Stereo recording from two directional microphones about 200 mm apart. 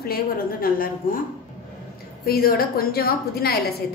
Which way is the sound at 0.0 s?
50° left (ahead or behind).